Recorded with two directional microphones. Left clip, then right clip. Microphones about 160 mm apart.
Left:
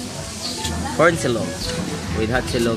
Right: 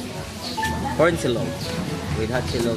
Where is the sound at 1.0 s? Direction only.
25° left (ahead or behind).